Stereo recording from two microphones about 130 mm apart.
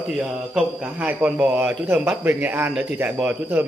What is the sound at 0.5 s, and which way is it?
Speech, 10° right (ahead or behind).